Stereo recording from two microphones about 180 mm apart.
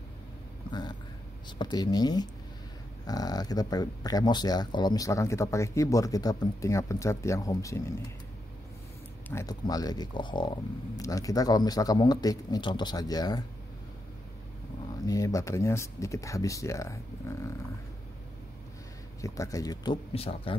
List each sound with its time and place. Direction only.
0.7 s a sound: 25° left (ahead or behind)
1.6 s speech: 25° left (ahead or behind)
9.3 s speech: 15° left (ahead or behind)
15.0 s speech: 20° left (ahead or behind)
19.2 s speech: 15° left (ahead or behind)